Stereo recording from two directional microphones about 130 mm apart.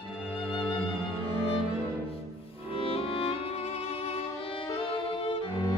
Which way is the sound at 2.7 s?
45° left (ahead or behind).